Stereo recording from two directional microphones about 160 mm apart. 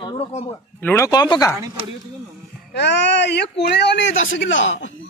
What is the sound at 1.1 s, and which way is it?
Speech, 25° left (ahead or behind).